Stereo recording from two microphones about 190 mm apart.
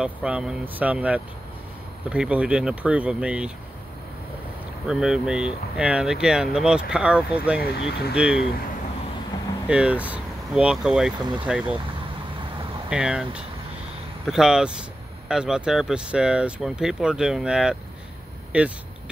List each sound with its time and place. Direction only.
0.0 s speech: 5° right (ahead or behind)
4.8 s speech: 5° right (ahead or behind)
9.7 s speech: 5° right (ahead or behind)
12.9 s speech: 5° right (ahead or behind)